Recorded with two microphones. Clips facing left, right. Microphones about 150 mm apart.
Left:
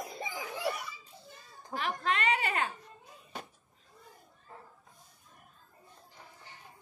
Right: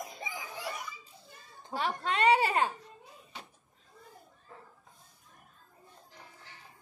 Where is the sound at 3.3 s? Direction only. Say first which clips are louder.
Left 5 dB; 45° left (ahead or behind).